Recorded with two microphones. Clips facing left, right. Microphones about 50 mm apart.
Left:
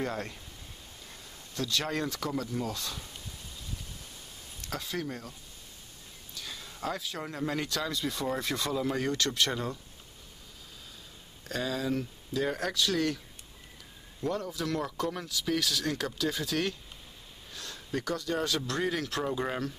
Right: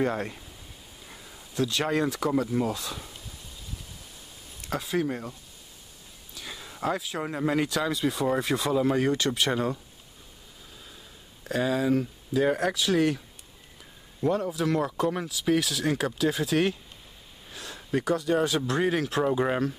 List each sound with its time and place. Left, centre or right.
0.0 s speech: centre
1.0 s a sound: centre
4.6 s speech: centre
6.3 s speech: centre
11.4 s speech: centre
11.9 s speech: centre
12.4 s speech: right
14.2 s speech: centre